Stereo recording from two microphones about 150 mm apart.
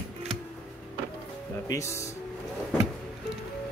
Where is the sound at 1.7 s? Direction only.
20° left (ahead or behind).